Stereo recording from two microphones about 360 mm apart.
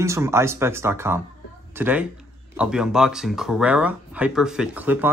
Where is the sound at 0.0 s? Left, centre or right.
Centre.